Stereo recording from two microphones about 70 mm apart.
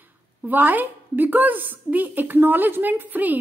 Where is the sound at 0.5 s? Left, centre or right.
Right.